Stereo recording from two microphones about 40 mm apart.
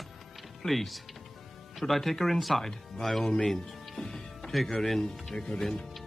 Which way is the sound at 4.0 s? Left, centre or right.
Centre.